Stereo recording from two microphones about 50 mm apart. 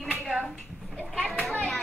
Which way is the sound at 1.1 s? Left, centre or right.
Centre.